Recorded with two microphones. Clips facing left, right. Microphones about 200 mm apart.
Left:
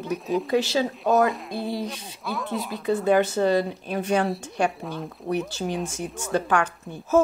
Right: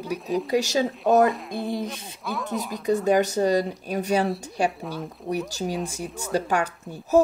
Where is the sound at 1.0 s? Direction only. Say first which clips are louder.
Right 3 dB; centre (ahead or behind).